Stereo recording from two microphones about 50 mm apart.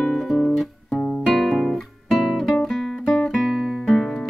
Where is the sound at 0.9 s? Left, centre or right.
Left.